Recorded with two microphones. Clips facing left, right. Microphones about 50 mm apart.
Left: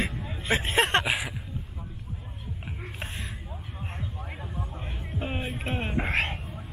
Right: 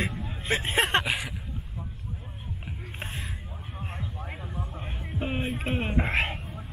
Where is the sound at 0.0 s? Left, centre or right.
Centre.